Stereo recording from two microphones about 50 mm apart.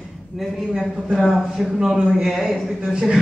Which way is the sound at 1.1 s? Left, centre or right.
Centre.